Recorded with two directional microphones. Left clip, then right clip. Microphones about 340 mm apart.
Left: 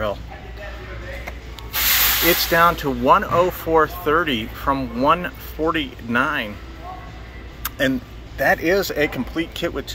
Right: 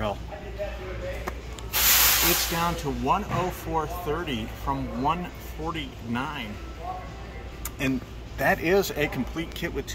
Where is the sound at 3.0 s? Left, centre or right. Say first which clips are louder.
Left 11 dB; left.